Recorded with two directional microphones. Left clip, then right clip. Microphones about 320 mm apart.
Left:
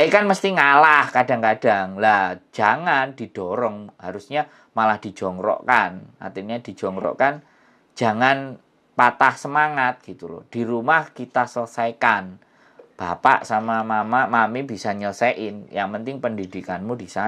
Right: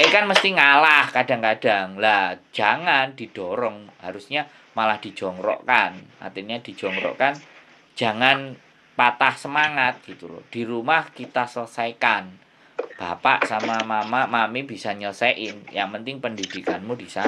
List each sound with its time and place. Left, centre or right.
0.1 s speech: left